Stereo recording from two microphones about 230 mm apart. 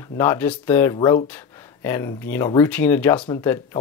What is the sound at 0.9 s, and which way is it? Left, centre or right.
Speech, left.